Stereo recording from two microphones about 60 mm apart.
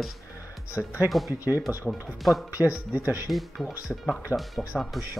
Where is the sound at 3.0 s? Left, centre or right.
Right.